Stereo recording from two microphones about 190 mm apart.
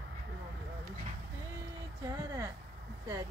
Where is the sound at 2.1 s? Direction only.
20° right (ahead or behind).